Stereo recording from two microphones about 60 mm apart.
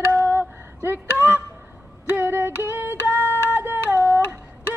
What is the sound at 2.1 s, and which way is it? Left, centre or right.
Female singing, right.